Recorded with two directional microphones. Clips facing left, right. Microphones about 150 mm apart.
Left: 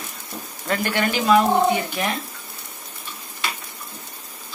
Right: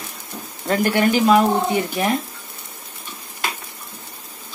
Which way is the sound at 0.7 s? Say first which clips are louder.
Right 4 dB; 25° right (ahead or behind).